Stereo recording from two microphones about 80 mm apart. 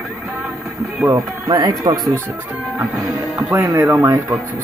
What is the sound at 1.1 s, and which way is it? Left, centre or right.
Speech, right.